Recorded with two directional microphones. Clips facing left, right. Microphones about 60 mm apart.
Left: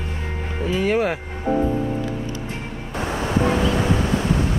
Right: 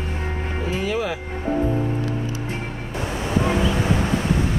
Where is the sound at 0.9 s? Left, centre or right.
Left.